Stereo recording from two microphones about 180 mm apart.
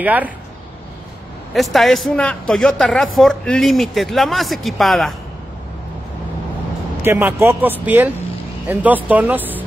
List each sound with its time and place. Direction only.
0.0 s speech: 10° right (ahead or behind)
1.5 s speech: centre (ahead or behind)
7.0 s speech: 10° right (ahead or behind)